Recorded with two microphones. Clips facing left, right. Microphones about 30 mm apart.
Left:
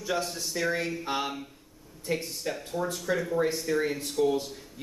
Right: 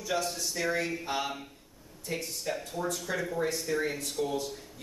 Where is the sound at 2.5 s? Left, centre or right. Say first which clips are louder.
Even; centre.